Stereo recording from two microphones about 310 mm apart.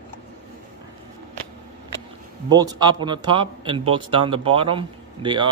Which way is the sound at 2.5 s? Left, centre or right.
Centre.